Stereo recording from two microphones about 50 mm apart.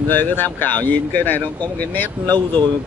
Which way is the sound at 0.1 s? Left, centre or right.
Left.